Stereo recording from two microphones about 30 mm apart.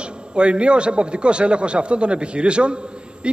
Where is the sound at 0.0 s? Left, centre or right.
Right.